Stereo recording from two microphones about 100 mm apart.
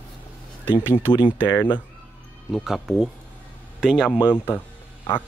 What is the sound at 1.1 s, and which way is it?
Speech, 50° left (ahead or behind).